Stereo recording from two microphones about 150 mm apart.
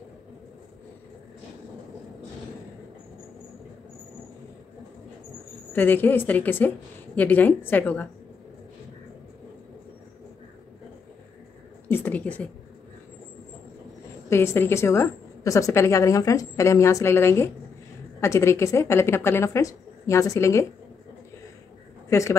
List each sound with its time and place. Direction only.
5.7 s a woman's voice: 15° left (ahead or behind)
11.9 s a sound: 10° left (ahead or behind)
14.3 s a woman's voice: 15° left (ahead or behind)
22.1 s a woman's voice: 20° left (ahead or behind)